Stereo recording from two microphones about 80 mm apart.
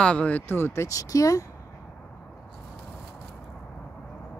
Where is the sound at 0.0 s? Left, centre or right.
Centre.